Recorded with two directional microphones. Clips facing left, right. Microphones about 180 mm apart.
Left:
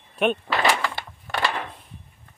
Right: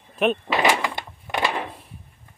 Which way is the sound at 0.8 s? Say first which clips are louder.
Right 1 dB; 15° right (ahead or behind).